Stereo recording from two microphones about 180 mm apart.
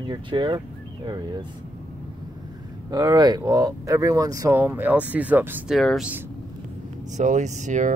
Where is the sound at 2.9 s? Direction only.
20° right (ahead or behind).